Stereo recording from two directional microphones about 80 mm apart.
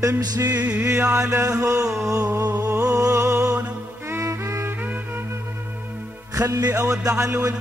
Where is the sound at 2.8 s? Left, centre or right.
Right.